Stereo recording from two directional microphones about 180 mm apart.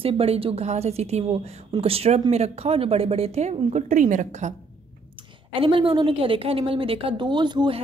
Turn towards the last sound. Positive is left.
turn(degrees=-25)  # may be behind; listen again after turning